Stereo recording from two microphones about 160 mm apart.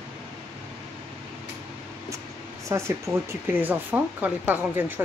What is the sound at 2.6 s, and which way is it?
Speech, 15° right (ahead or behind).